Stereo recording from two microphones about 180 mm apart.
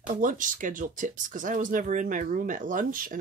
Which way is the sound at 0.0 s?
45° right (ahead or behind).